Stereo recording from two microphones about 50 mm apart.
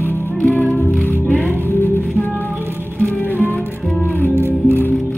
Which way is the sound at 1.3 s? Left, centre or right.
Left.